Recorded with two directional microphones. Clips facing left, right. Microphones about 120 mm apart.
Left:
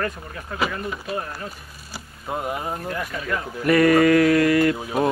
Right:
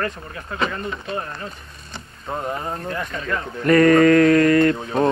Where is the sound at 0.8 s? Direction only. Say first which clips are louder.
Right 1 dB; 5° left (ahead or behind).